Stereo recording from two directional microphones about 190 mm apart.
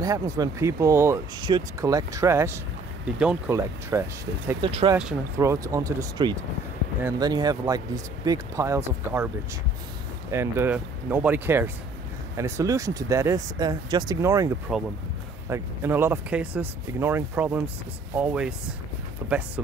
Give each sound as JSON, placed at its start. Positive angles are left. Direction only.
{"t": 0.0, "sound": "speech", "side_deg": -20}
{"t": 4.6, "sound": "speech", "side_deg": -30}
{"t": 4.9, "sound": "speech", "side_deg": -10}
{"t": 10.3, "sound": "speech", "side_deg": -10}
{"t": 14.7, "sound": "speech", "side_deg": -5}